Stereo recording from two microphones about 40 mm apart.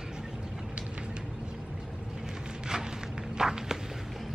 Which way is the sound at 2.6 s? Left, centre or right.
Centre.